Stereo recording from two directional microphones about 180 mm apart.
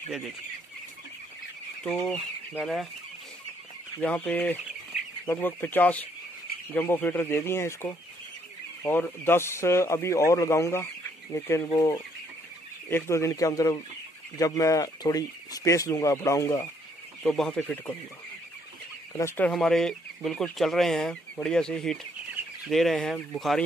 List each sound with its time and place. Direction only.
2.0 s speech: 5° left (ahead or behind)
3.9 s speech: 10° left (ahead or behind)
17.2 s speech: 5° left (ahead or behind)
19.1 s speech: 15° left (ahead or behind)